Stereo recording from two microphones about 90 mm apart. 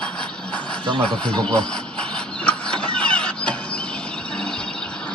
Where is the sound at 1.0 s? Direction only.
10° left (ahead or behind).